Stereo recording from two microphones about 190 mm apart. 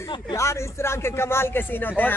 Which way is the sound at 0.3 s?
15° left (ahead or behind).